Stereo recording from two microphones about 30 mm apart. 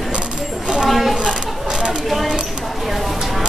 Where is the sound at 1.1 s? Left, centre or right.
Right.